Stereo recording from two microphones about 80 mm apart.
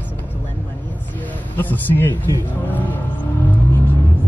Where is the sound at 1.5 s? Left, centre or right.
Left.